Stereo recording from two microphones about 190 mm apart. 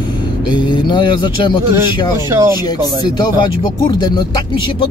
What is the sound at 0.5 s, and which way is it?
Speech, 25° left (ahead or behind).